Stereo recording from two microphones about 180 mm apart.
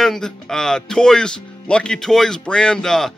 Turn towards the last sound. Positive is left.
turn(degrees=5)  # may be behind; listen again after turning